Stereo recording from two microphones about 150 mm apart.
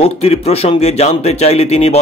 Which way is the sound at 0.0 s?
45° left (ahead or behind).